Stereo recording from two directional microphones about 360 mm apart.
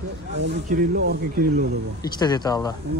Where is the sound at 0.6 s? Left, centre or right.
Right.